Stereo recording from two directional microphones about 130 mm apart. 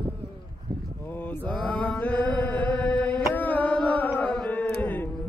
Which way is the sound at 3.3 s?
10° left (ahead or behind).